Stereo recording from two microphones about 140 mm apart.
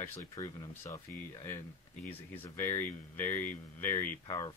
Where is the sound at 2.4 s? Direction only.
15° left (ahead or behind).